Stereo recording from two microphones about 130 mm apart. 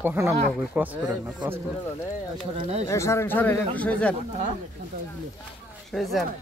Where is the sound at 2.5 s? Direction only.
55° right (ahead or behind).